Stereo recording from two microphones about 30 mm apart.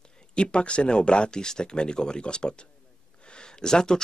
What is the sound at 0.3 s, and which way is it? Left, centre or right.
Speech, left.